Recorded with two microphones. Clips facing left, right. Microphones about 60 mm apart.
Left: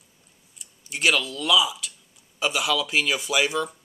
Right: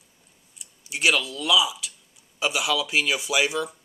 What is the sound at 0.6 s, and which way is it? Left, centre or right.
Speech, centre.